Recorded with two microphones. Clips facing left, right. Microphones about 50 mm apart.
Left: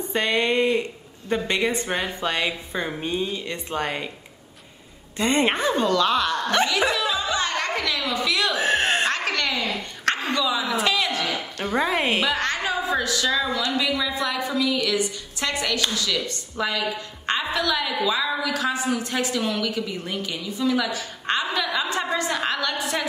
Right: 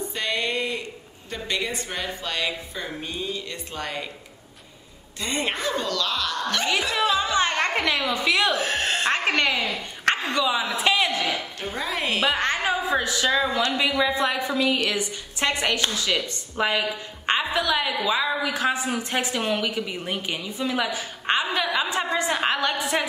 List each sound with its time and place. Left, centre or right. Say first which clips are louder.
0.1 s a sound: left 7 dB; left
1.3 s a woman's voice: left 5 dB; left
5.2 s a woman's voice: left 6 dB; left
7.0 s music: right 3 dB; right
8.5 s a sound: left 4 dB; left
9.0 s a sound: right 2 dB; right
10.3 s a woman's voice: even; right
11.7 s a woman's voice: left 5 dB; left
12.2 s a woman's voice: right 1 dB; right